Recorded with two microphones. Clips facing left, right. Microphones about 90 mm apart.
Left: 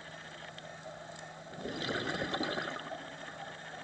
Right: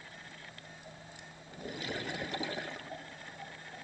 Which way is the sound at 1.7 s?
50° left (ahead or behind).